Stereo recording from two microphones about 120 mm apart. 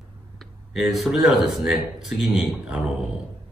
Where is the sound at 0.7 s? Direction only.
Centre (ahead or behind).